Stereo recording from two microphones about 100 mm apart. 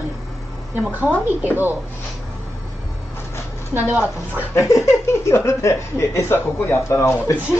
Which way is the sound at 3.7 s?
15° right (ahead or behind).